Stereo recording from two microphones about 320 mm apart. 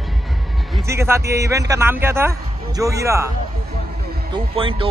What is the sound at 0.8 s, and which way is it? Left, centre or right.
A man's voice, centre.